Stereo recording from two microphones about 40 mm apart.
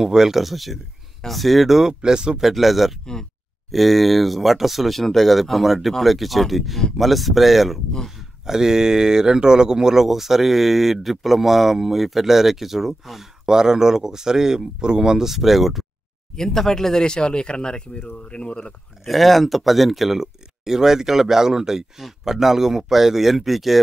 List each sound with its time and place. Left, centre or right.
0.0 s speech: centre
2.0 s speech: right
2.4 s speech: centre
13.5 s speech: centre
16.3 s speech: centre; by 18.7 s left
19.0 s speech: centre